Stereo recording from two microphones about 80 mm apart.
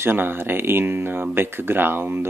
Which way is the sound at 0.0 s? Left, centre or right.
Right.